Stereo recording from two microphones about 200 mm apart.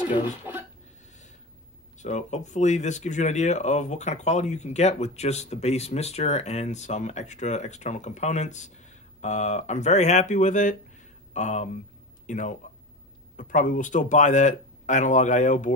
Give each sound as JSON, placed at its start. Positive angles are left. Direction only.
{"t": 0.2, "sound": "speech", "side_deg": -10}
{"t": 2.0, "sound": "speech", "side_deg": 35}